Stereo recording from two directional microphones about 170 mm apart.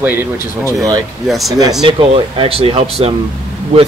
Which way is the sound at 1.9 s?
30° right (ahead or behind).